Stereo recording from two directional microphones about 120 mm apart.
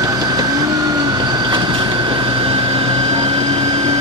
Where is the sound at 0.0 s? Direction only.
30° right (ahead or behind).